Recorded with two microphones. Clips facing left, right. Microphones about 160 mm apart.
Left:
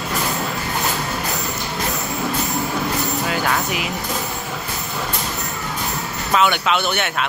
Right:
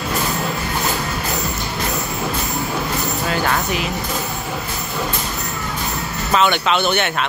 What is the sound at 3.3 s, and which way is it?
Speech, 10° left (ahead or behind).